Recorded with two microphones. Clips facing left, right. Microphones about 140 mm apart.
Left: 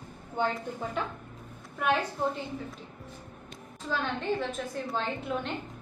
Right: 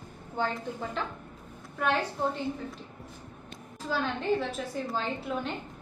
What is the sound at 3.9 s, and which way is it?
A woman's voice, 5° right (ahead or behind).